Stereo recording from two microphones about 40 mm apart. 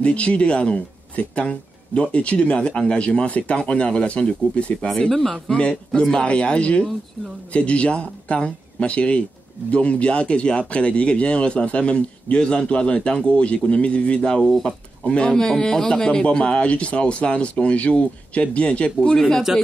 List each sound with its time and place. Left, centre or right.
0.0 s speech: left
4.8 s speech: centre
5.5 s speech: left
15.4 s speech: centre
19.1 s speech: centre